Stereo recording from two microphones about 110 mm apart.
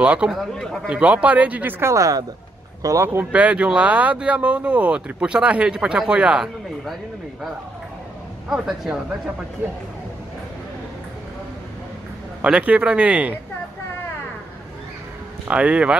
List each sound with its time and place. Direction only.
0.0 s speech: 10° right (ahead or behind); by 3.1 s 30° right (ahead or behind)
3.1 s speech: 15° right (ahead or behind)
8.5 s speech: 5° right (ahead or behind)
12.4 s speech: 10° right (ahead or behind)
15.4 s speech: 10° right (ahead or behind)